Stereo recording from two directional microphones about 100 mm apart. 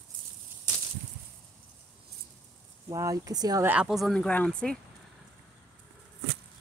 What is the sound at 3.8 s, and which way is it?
Speech, centre (ahead or behind).